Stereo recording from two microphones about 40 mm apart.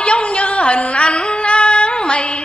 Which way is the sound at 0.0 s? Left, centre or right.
Left.